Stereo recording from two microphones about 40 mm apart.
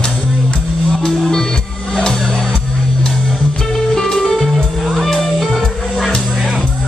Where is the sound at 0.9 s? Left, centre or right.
Centre.